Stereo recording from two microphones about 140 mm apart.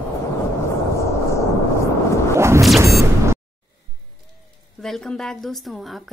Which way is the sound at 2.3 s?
20° right (ahead or behind).